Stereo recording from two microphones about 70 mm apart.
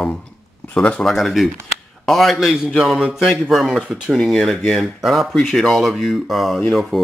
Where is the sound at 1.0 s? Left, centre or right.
Centre.